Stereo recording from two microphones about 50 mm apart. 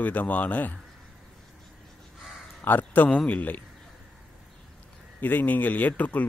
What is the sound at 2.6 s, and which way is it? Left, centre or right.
Speech, left.